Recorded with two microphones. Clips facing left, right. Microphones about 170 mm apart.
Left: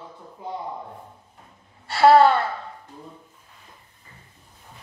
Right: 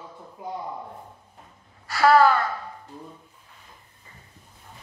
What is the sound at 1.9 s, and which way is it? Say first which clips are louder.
Speech: left 3 dB; 30° left (ahead or behind).